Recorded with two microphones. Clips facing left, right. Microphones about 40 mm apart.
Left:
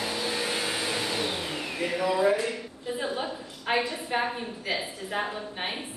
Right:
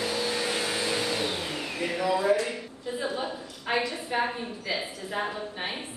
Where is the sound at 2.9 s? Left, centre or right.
Left.